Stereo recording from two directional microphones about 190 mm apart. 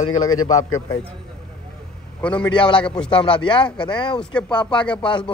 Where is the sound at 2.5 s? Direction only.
25° left (ahead or behind).